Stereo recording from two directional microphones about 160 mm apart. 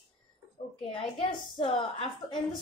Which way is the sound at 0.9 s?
35° left (ahead or behind).